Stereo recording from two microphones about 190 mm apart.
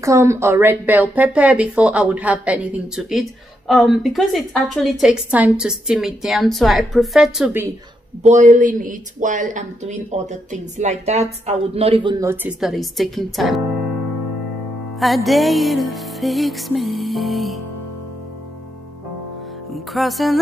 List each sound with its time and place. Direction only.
0.0 s speech: 15° right (ahead or behind)
8.2 s speech: 40° right (ahead or behind); by 12.5 s 15° right (ahead or behind)
12.5 s speech: centre (ahead or behind)
15.0 s speech: centre (ahead or behind)
19.7 s speech: centre (ahead or behind)